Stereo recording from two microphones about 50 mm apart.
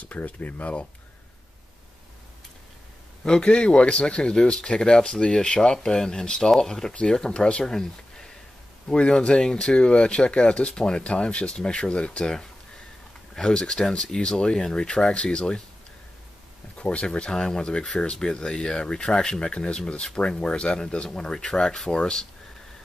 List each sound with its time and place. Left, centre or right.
0.0 s speech: left
3.3 s speech: centre
16.7 s speech: left